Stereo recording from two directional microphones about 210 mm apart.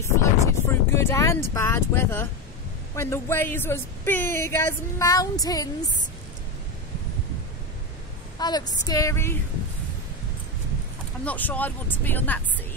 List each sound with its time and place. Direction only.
0.2 s speech: 15° left (ahead or behind)
8.4 s speech: 20° left (ahead or behind)
11.2 s speech: 10° left (ahead or behind)